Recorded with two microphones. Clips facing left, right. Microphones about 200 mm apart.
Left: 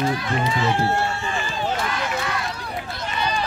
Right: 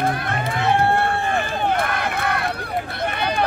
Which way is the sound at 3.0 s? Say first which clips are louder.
Right 3 dB; 60° right (ahead or behind).